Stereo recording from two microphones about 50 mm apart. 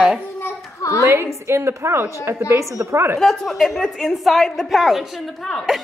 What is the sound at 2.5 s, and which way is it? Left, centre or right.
Speech, right.